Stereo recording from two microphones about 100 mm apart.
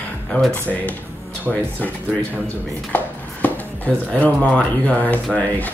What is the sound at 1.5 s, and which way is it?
Speech, 15° left (ahead or behind).